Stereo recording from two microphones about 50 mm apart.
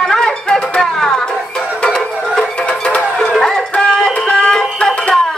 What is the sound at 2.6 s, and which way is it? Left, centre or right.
Music, centre.